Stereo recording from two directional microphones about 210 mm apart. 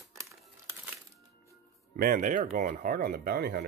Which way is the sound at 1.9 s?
45° right (ahead or behind).